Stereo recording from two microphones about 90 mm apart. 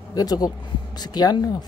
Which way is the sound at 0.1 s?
45° left (ahead or behind).